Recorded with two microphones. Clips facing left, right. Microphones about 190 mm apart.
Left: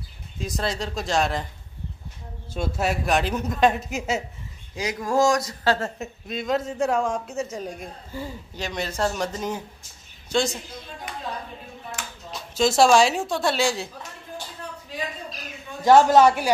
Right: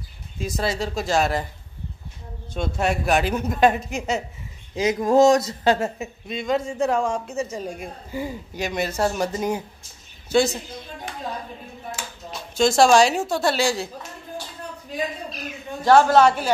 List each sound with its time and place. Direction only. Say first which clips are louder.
0.4 s a man's voice: right 3 dB; 5° right (ahead or behind)
2.5 s a man's voice: right 2 dB; 5° left (ahead or behind)
4.7 s speech: right 6 dB; 20° right (ahead or behind)
5.9 s a man's voice: right 1 dB; centre (ahead or behind)
8.1 s a man's voice: right 6 dB; 10° right (ahead or behind)
12.3 s a woman's voice: right 2 dB; centre (ahead or behind)
15.8 s a man's voice: even; 15° left (ahead or behind)